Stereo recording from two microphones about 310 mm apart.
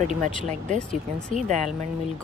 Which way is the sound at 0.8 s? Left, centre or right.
Centre.